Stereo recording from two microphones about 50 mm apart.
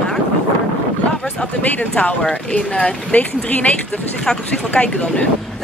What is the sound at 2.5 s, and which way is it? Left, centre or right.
Speech, left.